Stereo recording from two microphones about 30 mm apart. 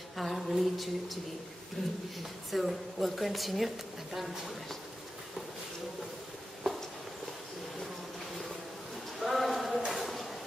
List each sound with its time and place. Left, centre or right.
0.2 s a woman's voice: centre
1.8 s speech: centre
2.5 s a woman's voice: centre
9.2 s a sound: centre